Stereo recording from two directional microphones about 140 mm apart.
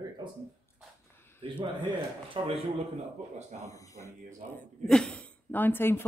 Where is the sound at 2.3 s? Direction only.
45° right (ahead or behind).